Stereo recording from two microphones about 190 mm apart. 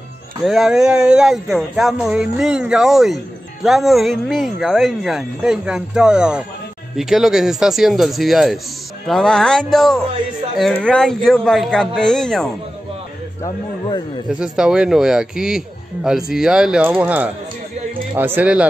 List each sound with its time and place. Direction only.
0.4 s speech: centre (ahead or behind)
13.4 s speech: 25° left (ahead or behind)
14.4 s speech: 5° right (ahead or behind)